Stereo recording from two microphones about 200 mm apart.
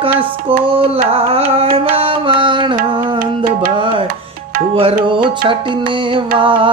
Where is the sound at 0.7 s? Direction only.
25° right (ahead or behind).